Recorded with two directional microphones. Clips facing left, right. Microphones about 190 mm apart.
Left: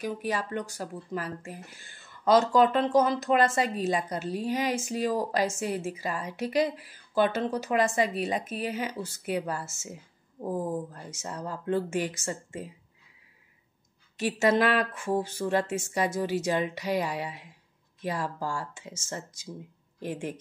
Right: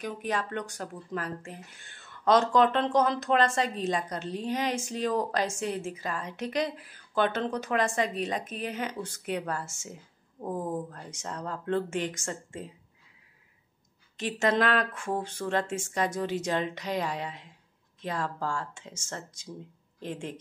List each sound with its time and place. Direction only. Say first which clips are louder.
0.0 s a woman's voice: left 1 dB; 5° left (ahead or behind)
14.1 s a woman's voice: left 2 dB; 5° left (ahead or behind)